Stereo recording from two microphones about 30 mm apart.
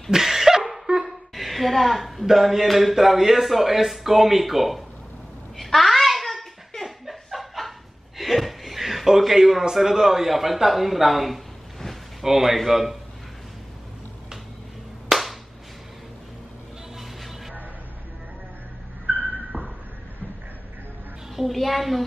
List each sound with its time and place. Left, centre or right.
0.1 s laughter: centre
1.0 s a sound: centre
2.3 s speech: centre
5.8 s a sound: centre
6.8 s snicker: centre
8.2 s chuckle: centre
9.2 s a man's voice: centre
15.1 s clapping: centre
19.5 s a sound: right
21.5 s speech: centre